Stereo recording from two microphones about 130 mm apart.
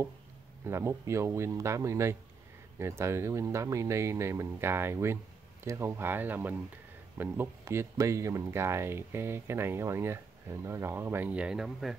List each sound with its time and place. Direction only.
0.7 s speech: 20° right (ahead or behind); by 12.0 s 5° right (ahead or behind)